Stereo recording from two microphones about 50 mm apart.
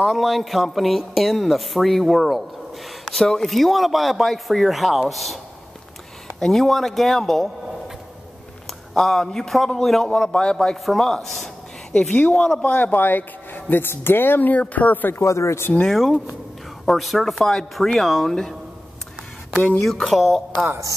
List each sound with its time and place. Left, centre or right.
0.0 s speech: centre
6.4 s speech: centre
8.6 s a man's voice: centre
12.1 s speech: left
14.5 s speech: left
15.1 s speech: left
15.9 s speech: centre
19.8 s speech: centre
20.5 s speech: right